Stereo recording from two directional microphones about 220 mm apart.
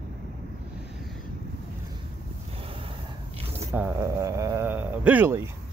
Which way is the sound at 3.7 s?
10° right (ahead or behind).